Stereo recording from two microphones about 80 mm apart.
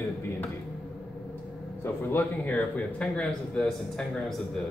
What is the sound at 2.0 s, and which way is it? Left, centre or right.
Speech, left.